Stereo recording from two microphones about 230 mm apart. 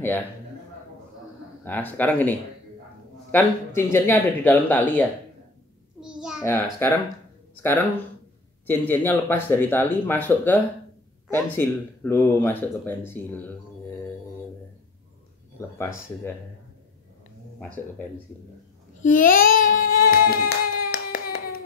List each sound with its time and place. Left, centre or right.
1.6 s speech: centre
5.9 s a sound: centre
6.4 s speech: centre
8.6 s speech: centre
15.8 s speech: centre
17.6 s speech: centre
18.9 s a sound: left
20.9 s hands: left